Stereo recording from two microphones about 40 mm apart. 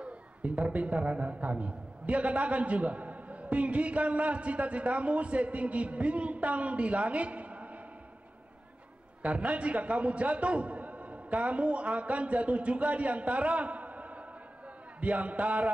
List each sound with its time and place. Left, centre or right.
0.0 s a man's voice: right
9.2 s a man's voice: right